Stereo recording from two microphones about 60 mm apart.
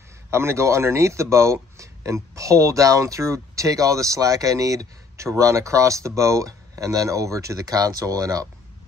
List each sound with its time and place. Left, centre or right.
0.3 s speech: right